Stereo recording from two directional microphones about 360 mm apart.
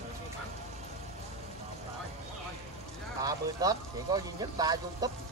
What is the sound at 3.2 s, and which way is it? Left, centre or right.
Speech, centre.